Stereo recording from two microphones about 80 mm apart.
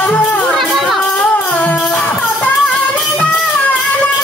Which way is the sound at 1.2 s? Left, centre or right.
Left.